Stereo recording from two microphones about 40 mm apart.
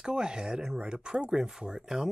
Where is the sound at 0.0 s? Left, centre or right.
Right.